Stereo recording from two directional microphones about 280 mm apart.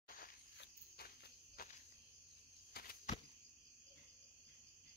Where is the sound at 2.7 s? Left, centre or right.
Left.